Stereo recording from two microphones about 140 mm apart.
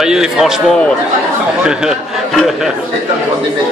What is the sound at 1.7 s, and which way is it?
A man's voice, 5° right (ahead or behind).